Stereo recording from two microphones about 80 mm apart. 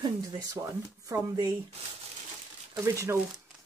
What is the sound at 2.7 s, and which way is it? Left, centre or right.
Speech, right.